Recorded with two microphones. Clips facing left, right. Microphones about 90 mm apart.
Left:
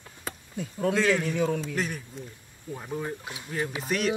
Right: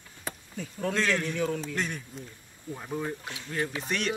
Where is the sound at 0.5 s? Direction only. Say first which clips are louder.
Left 5 dB; 25° left (ahead or behind).